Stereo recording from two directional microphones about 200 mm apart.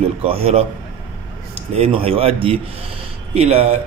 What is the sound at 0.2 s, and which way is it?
Speech, 30° right (ahead or behind).